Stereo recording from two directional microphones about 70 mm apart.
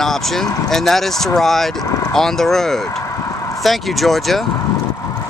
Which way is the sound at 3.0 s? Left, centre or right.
Left.